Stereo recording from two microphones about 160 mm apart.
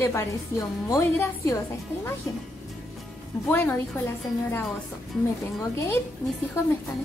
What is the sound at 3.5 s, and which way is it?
Speech, 10° left (ahead or behind).